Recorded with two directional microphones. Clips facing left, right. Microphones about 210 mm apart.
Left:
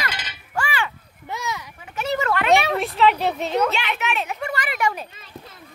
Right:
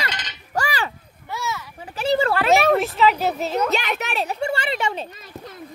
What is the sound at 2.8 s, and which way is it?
Speech, centre (ahead or behind).